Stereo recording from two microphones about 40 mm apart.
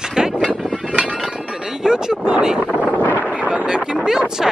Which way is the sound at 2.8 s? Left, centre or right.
Left.